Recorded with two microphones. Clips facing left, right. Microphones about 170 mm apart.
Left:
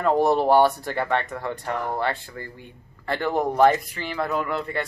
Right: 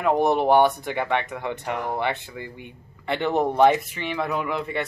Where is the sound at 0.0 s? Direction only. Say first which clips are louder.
Left 1 dB; 15° right (ahead or behind).